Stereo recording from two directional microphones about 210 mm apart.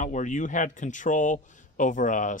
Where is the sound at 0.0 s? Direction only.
35° left (ahead or behind).